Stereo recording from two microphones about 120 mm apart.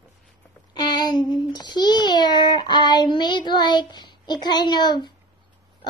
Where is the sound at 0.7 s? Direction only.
35° left (ahead or behind).